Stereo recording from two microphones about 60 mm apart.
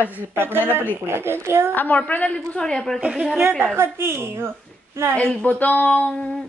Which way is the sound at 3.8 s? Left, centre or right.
Right.